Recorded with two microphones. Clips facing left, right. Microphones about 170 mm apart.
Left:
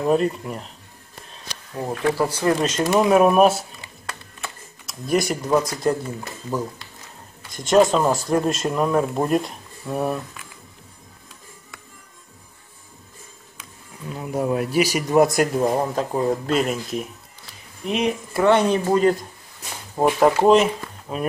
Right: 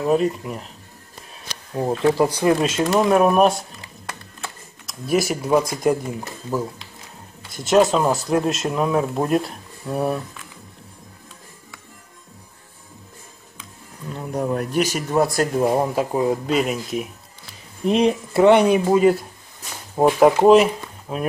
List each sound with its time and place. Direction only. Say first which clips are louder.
0.0 s speech: right 1 dB; centre (ahead or behind)
2.1 s speech: right 3 dB; 15° right (ahead or behind)
13.6 s speech: right 1 dB; 5° left (ahead or behind)
15.5 s speech: right 2 dB; 10° right (ahead or behind)
17.8 s speech: right 5 dB; 35° right (ahead or behind)
18.4 s speech: right 4 dB; 15° right (ahead or behind)